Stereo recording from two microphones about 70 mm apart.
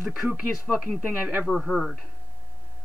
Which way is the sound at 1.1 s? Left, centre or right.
Right.